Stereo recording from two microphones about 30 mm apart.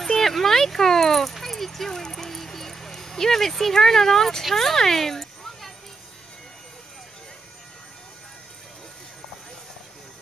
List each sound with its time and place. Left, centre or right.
0.0 s speech: centre